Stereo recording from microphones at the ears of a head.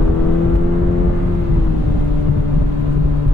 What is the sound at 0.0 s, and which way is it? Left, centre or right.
Vehicle, left.